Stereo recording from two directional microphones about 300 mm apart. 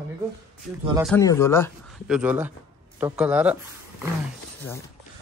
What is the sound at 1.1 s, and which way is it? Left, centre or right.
Speech, centre.